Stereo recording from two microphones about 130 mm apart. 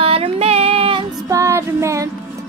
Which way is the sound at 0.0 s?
50° right (ahead or behind).